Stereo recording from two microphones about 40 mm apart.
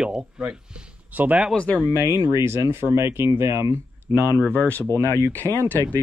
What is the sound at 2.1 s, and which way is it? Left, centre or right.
Speech, right.